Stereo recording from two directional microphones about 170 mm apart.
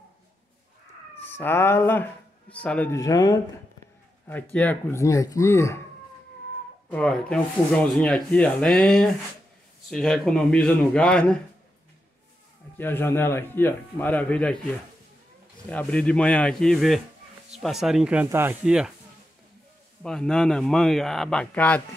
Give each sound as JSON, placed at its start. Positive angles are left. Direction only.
{"t": 1.1, "sound": "speech", "side_deg": 10}
{"t": 3.0, "sound": "speech", "side_deg": 20}
{"t": 4.3, "sound": "speech", "side_deg": 10}
{"t": 6.9, "sound": "speech", "side_deg": 5}
{"t": 12.7, "sound": "speech", "side_deg": 10}
{"t": 15.7, "sound": "speech", "side_deg": 5}
{"t": 20.0, "sound": "speech", "side_deg": 5}